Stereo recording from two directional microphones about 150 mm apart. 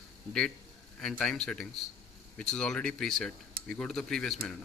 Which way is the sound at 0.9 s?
5° left (ahead or behind).